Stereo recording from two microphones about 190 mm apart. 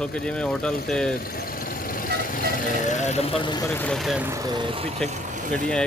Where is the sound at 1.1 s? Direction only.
50° left (ahead or behind); by 4.3 s centre (ahead or behind).